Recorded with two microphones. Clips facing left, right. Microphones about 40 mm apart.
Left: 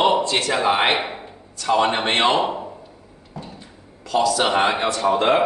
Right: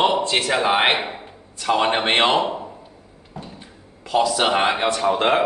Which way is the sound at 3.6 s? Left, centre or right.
Right.